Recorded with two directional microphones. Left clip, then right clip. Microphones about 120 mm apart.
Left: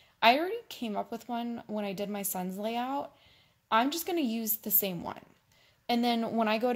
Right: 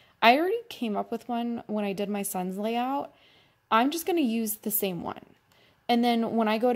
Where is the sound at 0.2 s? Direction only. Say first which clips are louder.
Right 4 dB; 45° right (ahead or behind).